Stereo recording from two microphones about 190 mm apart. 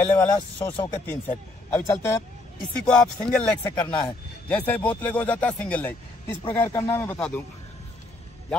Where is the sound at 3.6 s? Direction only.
20° left (ahead or behind).